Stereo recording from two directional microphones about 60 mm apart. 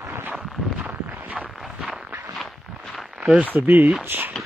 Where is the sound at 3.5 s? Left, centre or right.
Right.